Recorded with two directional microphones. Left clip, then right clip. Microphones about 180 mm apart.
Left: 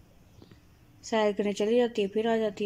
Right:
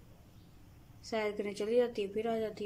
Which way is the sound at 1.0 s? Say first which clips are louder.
Left 9 dB; 25° left (ahead or behind).